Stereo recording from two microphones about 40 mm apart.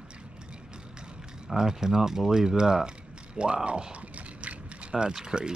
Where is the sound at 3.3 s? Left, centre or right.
Right.